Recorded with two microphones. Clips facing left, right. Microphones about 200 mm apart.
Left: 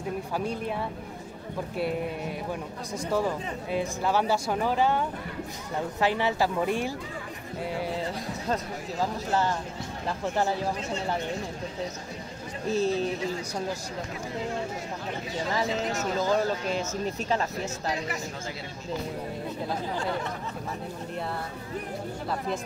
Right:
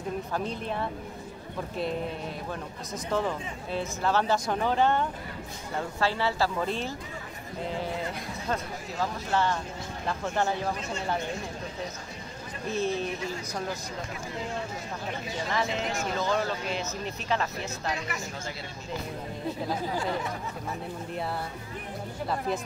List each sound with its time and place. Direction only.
0.3 s speech: 10° left (ahead or behind)
2.9 s speech: 10° left (ahead or behind)
5.9 s speech: 15° left (ahead or behind)
8.0 s speech: 30° left (ahead or behind)
10.0 s speech: 15° left (ahead or behind)
12.6 s speech: 35° left (ahead or behind)
15.5 s speech: 35° left (ahead or behind)